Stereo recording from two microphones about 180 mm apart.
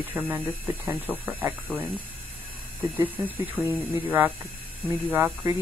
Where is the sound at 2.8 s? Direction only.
10° right (ahead or behind).